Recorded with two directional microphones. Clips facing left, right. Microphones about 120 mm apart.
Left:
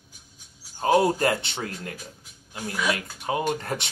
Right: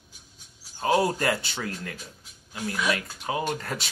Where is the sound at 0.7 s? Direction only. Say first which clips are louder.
Left 3 dB; 25° left (ahead or behind).